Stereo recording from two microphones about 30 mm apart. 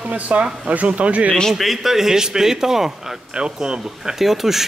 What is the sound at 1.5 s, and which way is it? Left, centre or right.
A man's voice, centre.